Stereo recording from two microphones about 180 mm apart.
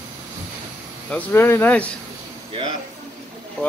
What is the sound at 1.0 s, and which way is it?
Speech, 10° left (ahead or behind).